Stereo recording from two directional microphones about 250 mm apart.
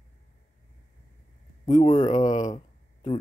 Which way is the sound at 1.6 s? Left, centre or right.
Left.